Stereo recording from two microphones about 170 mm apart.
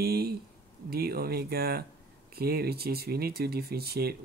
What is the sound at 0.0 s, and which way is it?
Speech, 65° right (ahead or behind).